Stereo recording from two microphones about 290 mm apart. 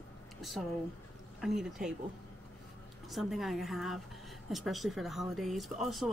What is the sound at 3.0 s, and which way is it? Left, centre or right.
Speech, centre.